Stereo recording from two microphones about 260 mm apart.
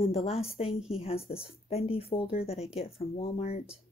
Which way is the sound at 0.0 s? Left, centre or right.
Left.